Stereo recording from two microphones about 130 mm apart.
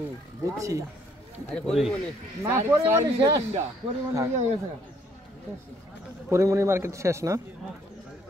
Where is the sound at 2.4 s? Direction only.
20° right (ahead or behind).